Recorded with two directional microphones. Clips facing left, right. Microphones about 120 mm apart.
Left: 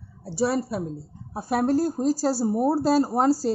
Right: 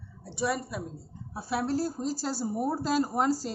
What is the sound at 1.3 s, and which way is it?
Speech, 45° left (ahead or behind).